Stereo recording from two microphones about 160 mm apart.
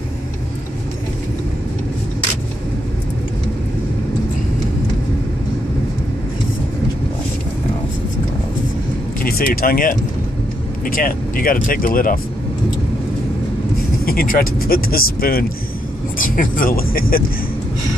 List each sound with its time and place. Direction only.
9.2 s speech: 65° left (ahead or behind)
14.0 s speech: 65° left (ahead or behind)